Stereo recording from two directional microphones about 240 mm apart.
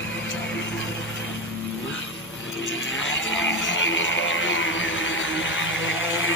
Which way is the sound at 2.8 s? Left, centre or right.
Left.